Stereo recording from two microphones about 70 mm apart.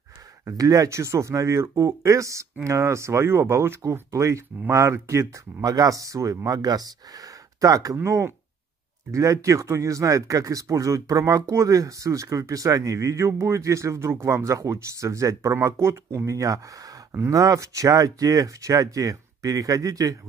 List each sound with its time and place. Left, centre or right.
0.5 s speech: right
5.6 s speech: right